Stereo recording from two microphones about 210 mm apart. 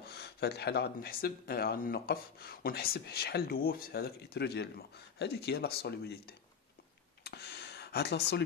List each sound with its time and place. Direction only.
0.0 s speech: 50° left (ahead or behind)